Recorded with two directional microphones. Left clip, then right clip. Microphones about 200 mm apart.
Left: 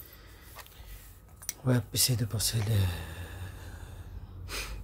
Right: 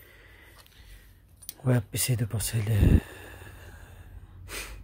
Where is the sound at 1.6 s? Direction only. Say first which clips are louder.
Even; 20° right (ahead or behind).